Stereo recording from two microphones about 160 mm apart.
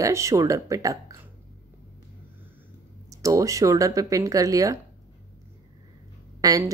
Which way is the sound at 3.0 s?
20° right (ahead or behind).